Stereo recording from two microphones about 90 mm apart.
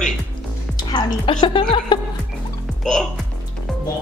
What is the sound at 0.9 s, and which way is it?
Speech, 65° left (ahead or behind).